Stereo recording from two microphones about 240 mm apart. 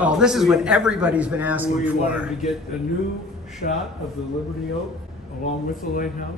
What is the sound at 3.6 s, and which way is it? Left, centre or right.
Speech, left.